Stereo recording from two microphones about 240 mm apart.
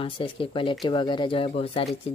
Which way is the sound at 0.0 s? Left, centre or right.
Left.